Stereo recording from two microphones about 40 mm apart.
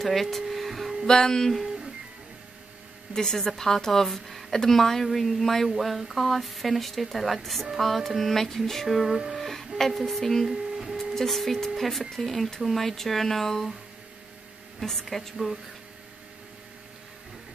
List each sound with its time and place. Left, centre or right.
0.0 s a sound: centre
1.0 s a woman's voice: centre
3.1 s a woman's voice: centre
9.4 s a sound: centre
9.8 s speech: centre
10.5 s printer: centre
11.1 s speech: centre
14.8 s speech: centre